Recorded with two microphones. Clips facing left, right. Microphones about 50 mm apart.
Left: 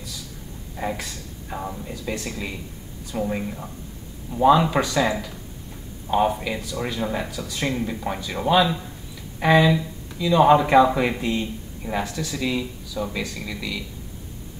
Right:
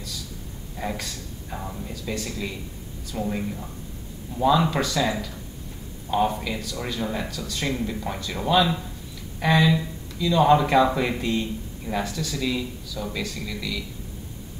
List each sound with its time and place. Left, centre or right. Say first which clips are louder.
0.7 s speech: left 2 dB; centre